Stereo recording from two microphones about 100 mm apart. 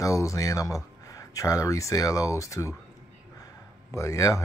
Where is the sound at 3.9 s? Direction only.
30° left (ahead or behind).